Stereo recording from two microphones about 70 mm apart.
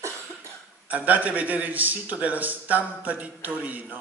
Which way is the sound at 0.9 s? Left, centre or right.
Right.